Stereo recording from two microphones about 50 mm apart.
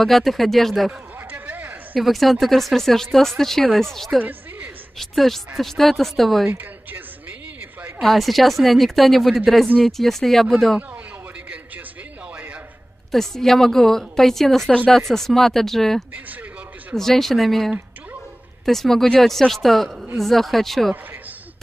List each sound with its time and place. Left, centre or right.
0.0 s speech: centre
1.3 s a sound: right
2.0 s speech: centre
4.2 s music: right
4.9 s speech: centre
6.6 s a sound: right
8.0 s speech: centre
13.1 s a woman's voice: centre